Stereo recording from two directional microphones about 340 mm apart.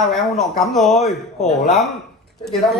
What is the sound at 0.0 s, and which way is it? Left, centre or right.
Speech, centre.